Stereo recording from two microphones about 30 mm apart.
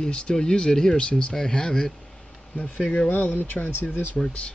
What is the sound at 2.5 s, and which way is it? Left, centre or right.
Speech, left.